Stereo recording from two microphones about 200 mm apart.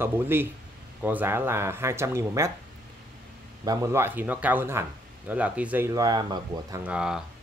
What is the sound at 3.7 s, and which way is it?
Speech, 15° right (ahead or behind).